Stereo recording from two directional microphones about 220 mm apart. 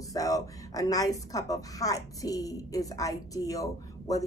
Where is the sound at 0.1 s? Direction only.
15° left (ahead or behind).